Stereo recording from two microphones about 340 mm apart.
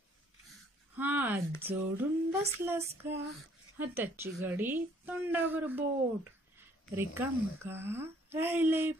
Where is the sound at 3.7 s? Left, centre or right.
Centre.